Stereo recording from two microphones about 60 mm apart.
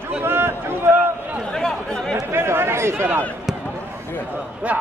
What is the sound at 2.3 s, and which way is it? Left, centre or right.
Chatter, right.